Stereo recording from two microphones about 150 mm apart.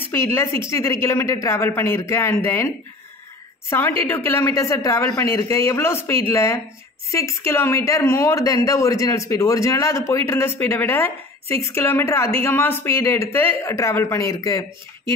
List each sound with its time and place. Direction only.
0.1 s speech: 20° left (ahead or behind)
4.0 s speech: 15° left (ahead or behind)